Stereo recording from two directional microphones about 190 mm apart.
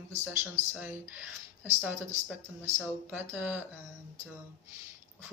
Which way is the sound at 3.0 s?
10° right (ahead or behind).